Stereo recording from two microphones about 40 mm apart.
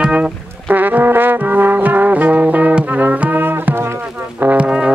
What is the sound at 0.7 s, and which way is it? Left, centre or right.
Trombone, right.